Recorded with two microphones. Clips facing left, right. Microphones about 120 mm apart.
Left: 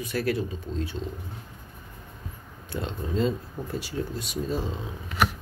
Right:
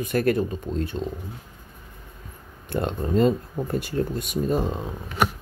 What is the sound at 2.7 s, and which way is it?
Speech, 55° right (ahead or behind).